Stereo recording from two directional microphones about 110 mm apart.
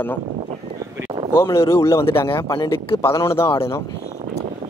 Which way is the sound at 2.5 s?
50° left (ahead or behind).